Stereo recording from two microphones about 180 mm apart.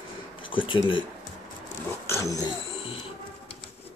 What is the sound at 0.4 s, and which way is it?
Speech, 30° left (ahead or behind).